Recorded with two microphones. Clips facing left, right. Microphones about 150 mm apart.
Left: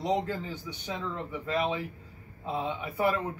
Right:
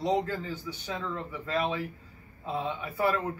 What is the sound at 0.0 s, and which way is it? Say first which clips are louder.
A man's voice: right 1 dB; 15° left (ahead or behind).